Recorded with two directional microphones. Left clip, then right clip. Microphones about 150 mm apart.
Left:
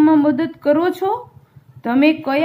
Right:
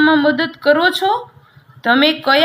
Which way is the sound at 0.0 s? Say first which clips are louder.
Right 1 dB; 25° left (ahead or behind).